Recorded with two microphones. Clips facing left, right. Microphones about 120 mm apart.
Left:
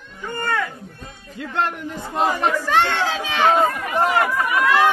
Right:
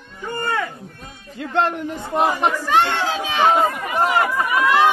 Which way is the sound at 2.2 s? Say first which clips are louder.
Right 1 dB; 15° right (ahead or behind).